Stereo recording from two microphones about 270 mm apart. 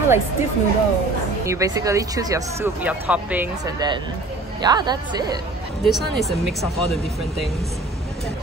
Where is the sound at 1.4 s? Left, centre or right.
Centre.